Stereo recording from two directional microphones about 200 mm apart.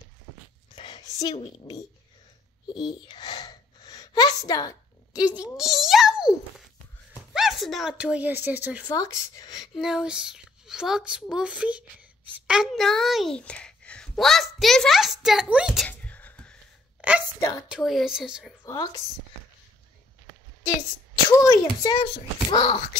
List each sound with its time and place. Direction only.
0.7 s a sound: 20° left (ahead or behind)
2.7 s gasp: 20° left (ahead or behind)
5.6 s a child's voice: centre (ahead or behind)
8.8 s speech: 15° left (ahead or behind)
9.6 s a child's voice: centre (ahead or behind)
15.9 s a sound: 5° left (ahead or behind)
17.0 s a sound: 5° right (ahead or behind)
17.4 s speech: 15° left (ahead or behind)
17.6 s speech: centre (ahead or behind)
18.6 s a woman's voice: 20° left (ahead or behind)
21.4 s a child's voice: 20° left (ahead or behind)